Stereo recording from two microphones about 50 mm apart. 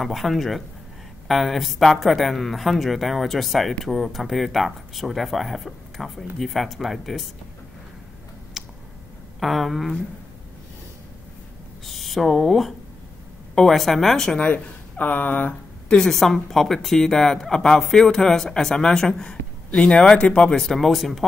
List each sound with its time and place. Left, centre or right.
0.0 s speech: centre
8.6 s a sound: centre
9.4 s speech: centre
11.8 s speech: centre
14.4 s speech: left
16.1 s speech: centre